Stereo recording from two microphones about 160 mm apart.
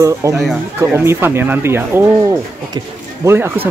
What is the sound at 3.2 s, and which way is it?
Speech, 15° right (ahead or behind).